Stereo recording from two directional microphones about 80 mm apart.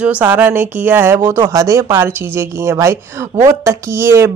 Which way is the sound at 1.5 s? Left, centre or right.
Right.